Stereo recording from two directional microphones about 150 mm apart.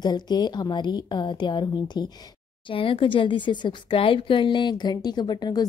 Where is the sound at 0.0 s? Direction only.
30° left (ahead or behind).